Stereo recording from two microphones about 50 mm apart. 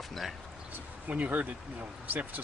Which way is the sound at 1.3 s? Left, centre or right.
Right.